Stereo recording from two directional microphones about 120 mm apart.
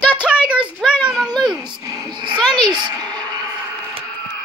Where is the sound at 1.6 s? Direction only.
40° right (ahead or behind).